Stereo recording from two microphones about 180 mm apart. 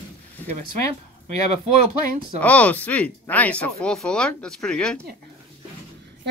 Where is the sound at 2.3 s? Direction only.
10° left (ahead or behind).